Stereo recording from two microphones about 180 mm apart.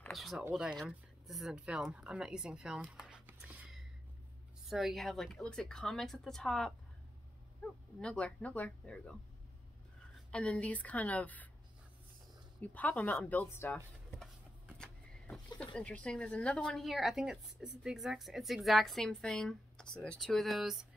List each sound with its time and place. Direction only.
0.0 s a woman's voice: centre (ahead or behind)
10.3 s speech: 5° left (ahead or behind)
12.5 s speech: 10° left (ahead or behind)
14.8 s vehicle: centre (ahead or behind)
15.6 s a woman's voice: 5° left (ahead or behind)